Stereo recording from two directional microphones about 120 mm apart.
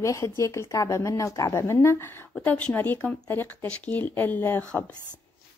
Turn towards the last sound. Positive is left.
turn(degrees=15)  # may be behind; listen again after turning